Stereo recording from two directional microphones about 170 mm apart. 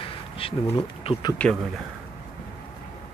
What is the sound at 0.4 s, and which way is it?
Speech, 30° left (ahead or behind).